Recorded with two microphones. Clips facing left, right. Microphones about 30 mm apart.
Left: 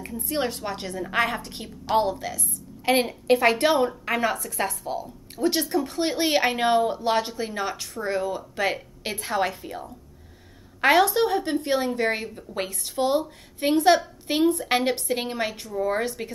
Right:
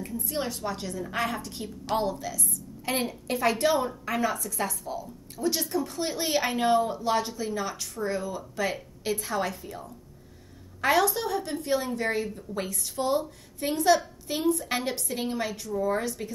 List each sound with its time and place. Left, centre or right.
0.2 s a woman's voice: left